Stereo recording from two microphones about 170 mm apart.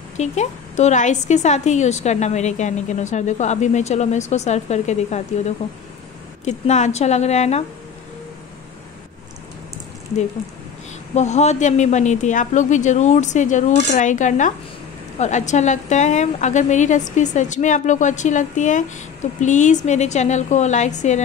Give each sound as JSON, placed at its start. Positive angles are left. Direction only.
{"t": 0.2, "sound": "a woman's voice", "side_deg": 40}
{"t": 11.1, "sound": "a woman's voice", "side_deg": 40}